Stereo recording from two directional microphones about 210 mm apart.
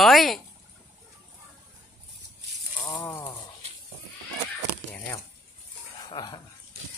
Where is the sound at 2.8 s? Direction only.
15° left (ahead or behind).